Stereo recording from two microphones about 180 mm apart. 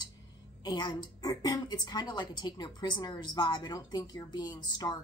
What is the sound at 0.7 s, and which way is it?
A woman's voice, 25° left (ahead or behind).